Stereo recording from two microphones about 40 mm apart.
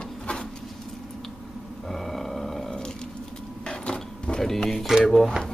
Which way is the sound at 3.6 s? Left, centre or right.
Left.